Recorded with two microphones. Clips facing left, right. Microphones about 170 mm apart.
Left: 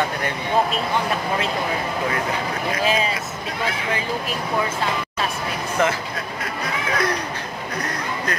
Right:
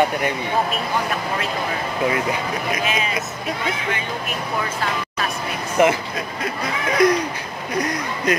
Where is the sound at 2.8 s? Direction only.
30° left (ahead or behind).